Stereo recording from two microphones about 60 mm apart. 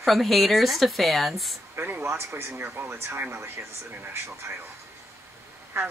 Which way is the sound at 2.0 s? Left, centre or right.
Right.